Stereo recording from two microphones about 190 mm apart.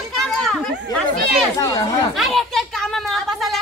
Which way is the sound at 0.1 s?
Centre (ahead or behind).